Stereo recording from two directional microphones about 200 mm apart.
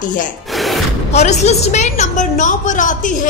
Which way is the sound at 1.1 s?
35° left (ahead or behind).